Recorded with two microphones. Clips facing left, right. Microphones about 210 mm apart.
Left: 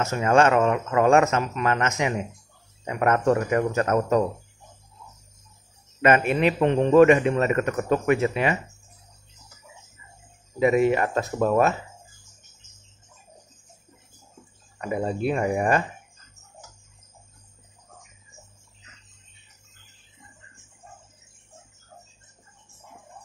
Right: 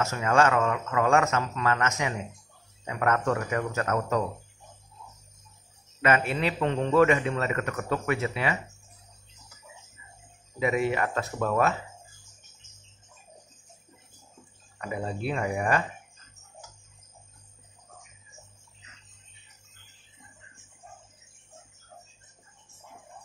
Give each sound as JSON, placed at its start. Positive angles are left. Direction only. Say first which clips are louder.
{"t": 0.0, "sound": "speech", "louder": "left 4 dB", "side_deg": 25}
{"t": 6.0, "sound": "a man's voice", "louder": "left 6 dB", "side_deg": 20}
{"t": 10.6, "sound": "speech", "louder": "left 6 dB", "side_deg": 40}
{"t": 11.1, "sound": "speech", "louder": "left 5 dB", "side_deg": 25}
{"t": 15.4, "sound": "speech", "louder": "left 3 dB", "side_deg": 35}